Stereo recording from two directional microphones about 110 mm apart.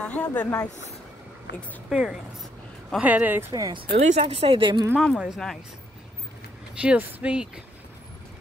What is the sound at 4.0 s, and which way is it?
Speech, 75° right (ahead or behind).